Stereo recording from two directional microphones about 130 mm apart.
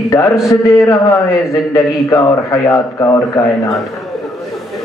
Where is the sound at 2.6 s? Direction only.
20° left (ahead or behind).